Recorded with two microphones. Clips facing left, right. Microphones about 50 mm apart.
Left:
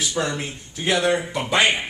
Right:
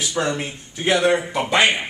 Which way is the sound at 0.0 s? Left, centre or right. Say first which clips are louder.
Right 2 dB; centre.